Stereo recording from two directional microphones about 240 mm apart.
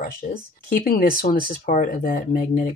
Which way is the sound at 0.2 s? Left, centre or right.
Left.